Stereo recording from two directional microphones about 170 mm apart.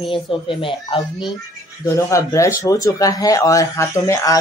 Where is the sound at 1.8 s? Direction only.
20° left (ahead or behind).